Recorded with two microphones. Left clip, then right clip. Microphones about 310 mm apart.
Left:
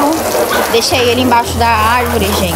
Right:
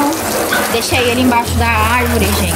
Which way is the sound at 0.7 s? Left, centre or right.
Centre.